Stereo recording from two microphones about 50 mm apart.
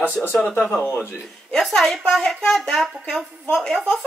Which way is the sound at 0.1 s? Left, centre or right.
Left.